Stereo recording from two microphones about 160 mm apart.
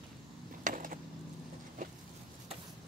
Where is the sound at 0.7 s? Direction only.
55° right (ahead or behind).